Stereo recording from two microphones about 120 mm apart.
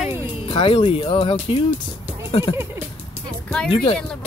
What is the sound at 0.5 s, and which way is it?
Speech, 45° left (ahead or behind).